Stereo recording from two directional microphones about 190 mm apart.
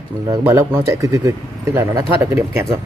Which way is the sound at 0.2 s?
15° right (ahead or behind).